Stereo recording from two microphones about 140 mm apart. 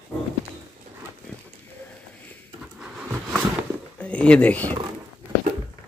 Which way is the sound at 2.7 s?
5° right (ahead or behind).